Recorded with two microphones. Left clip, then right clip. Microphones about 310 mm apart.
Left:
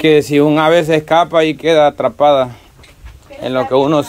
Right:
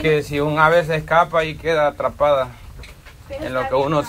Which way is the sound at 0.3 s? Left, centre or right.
Left.